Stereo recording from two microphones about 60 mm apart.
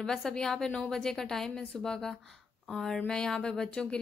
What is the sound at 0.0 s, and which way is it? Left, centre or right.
Speech, centre.